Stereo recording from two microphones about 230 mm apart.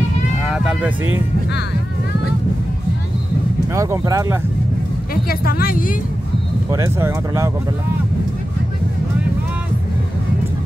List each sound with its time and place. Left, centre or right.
0.5 s vehicle: centre
3.7 s speech: centre
5.1 s a woman's voice: left
6.7 s speech: centre